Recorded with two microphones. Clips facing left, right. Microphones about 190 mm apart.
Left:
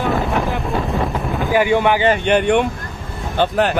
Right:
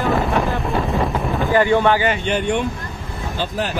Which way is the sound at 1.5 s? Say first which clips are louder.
Even; 15° left (ahead or behind).